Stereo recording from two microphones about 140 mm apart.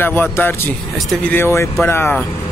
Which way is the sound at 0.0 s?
15° left (ahead or behind).